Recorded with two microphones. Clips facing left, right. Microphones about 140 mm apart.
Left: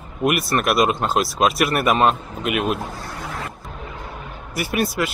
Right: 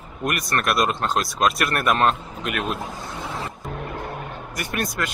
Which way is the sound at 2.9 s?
20° right (ahead or behind).